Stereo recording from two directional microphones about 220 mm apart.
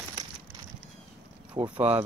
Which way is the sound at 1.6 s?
20° right (ahead or behind).